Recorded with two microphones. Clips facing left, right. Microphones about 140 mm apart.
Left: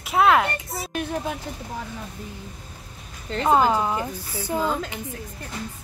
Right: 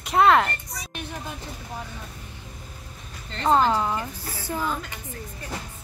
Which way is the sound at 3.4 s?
10° left (ahead or behind).